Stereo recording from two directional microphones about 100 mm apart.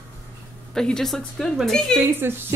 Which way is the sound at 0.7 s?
5° left (ahead or behind).